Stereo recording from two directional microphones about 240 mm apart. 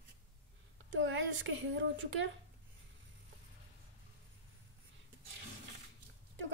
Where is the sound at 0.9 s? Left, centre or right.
Right.